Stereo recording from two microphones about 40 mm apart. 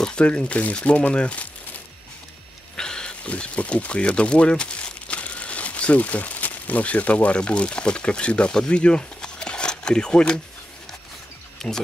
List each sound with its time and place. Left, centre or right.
0.0 s a sound: left
0.5 s speech: left
2.7 s a sound: centre
3.3 s speech: left
7.3 s speech: left
11.6 s speech: centre